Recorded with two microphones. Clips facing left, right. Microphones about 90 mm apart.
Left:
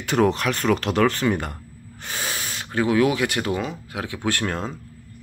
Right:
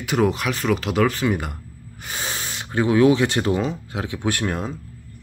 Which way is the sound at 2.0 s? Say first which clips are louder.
Even; 20° right (ahead or behind).